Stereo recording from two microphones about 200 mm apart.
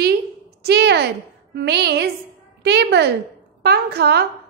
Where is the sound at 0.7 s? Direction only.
55° right (ahead or behind).